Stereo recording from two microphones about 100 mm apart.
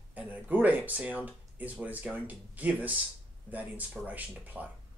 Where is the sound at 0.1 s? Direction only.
15° right (ahead or behind).